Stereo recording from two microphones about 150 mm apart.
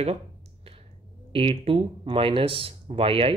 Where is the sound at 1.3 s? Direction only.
40° right (ahead or behind).